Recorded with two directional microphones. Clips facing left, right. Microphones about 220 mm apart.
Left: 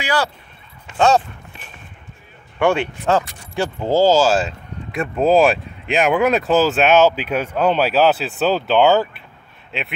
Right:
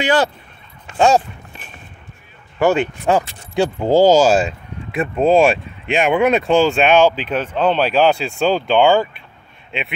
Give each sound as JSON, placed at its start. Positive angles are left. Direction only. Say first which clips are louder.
{"t": 0.0, "sound": "speech", "louder": "right 5 dB", "side_deg": -25}
{"t": 0.9, "sound": "speech", "louder": "right 1 dB", "side_deg": -10}
{"t": 2.6, "sound": "speech", "louder": "right 2 dB", "side_deg": -10}
{"t": 4.9, "sound": "speech", "louder": "right 1 dB", "side_deg": 0}